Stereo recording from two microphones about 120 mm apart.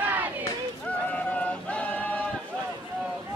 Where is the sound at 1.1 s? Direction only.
10° left (ahead or behind).